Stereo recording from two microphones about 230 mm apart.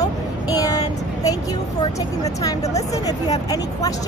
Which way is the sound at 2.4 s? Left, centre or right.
Centre.